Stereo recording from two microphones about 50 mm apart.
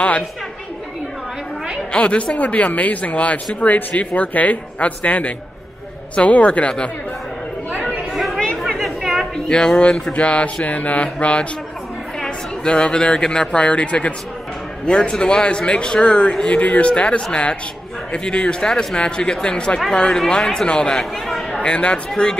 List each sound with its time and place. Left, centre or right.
1.9 s a man's voice: left
8.1 s chatter: centre
8.4 s chatter: centre
8.7 s chatter: centre
9.5 s a man's voice: centre
21.3 s a sound: centre
21.5 s a man's voice: left